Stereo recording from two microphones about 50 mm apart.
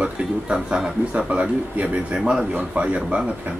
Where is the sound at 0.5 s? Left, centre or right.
Centre.